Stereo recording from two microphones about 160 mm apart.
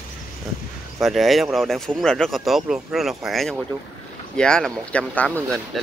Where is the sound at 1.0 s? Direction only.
Centre (ahead or behind).